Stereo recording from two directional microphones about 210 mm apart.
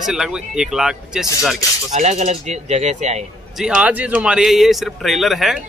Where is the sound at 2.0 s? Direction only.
35° right (ahead or behind).